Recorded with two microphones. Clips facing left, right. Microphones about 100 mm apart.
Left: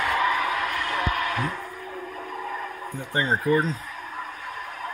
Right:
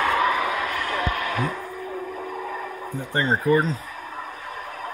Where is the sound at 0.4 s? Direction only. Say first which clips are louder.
Right 1 dB; 15° right (ahead or behind).